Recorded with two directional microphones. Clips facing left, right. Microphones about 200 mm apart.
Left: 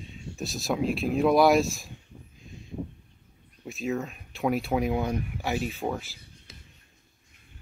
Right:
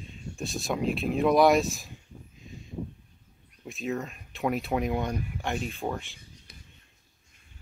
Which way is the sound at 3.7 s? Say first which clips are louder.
Left 2 dB; centre (ahead or behind).